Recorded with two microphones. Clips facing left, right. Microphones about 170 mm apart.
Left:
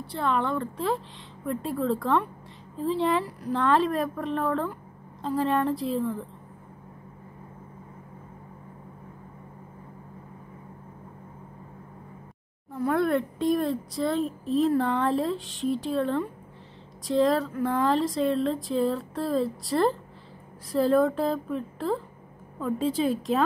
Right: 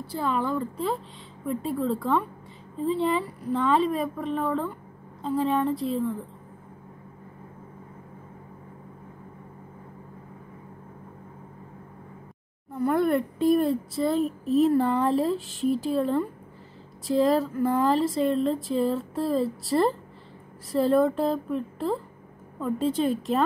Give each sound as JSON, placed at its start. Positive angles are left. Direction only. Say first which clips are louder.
{"t": 0.1, "sound": "speech", "louder": "even", "side_deg": -5}
{"t": 12.7, "sound": "speech", "louder": "right 1 dB", "side_deg": 0}